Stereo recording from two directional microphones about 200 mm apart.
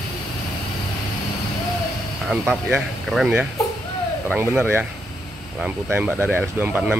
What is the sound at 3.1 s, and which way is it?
Speech, centre (ahead or behind).